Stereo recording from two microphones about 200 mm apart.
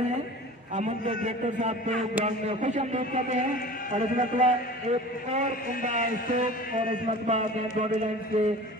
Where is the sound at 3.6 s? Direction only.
45° left (ahead or behind).